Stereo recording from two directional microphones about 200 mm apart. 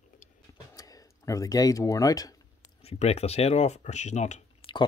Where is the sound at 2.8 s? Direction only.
30° left (ahead or behind).